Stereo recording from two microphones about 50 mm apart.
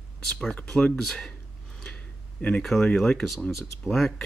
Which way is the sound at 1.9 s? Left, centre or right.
Left.